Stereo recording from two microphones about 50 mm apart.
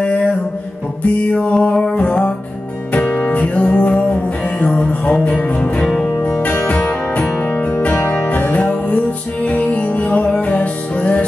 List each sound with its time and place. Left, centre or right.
0.0 s music: left
1.3 s music: left
5.6 s music: centre; by 11.2 s left